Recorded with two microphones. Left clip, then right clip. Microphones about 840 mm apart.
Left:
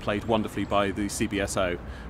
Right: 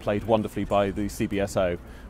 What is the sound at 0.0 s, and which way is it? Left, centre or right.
Speech, right.